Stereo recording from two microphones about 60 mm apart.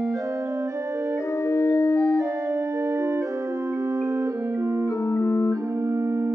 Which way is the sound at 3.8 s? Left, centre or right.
Right.